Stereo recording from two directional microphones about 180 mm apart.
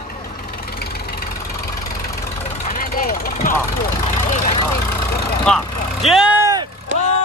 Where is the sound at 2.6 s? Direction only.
50° left (ahead or behind).